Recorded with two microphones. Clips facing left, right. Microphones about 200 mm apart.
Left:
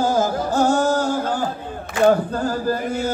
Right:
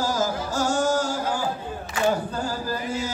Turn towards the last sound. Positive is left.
turn(degrees=55)  # may be behind; listen again after turning